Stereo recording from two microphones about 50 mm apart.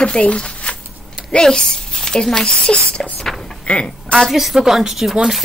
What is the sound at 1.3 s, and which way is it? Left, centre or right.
A woman's voice, centre.